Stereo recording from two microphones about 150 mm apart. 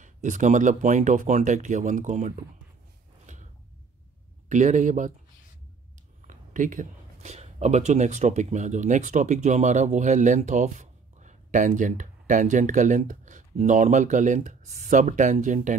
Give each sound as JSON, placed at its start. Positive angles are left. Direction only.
{"t": 0.0, "sound": "speech", "side_deg": -55}
{"t": 3.3, "sound": "creak", "side_deg": -55}
{"t": 4.5, "sound": "speech", "side_deg": -55}
{"t": 6.2, "sound": "speech", "side_deg": -60}